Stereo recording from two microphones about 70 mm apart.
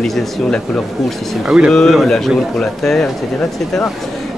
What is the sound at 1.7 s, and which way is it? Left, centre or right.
Speech, centre.